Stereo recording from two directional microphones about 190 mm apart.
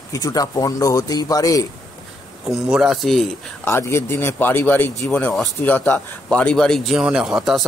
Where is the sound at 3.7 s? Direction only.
15° left (ahead or behind).